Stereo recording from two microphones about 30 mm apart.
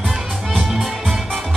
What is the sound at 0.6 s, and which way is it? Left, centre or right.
Music, centre.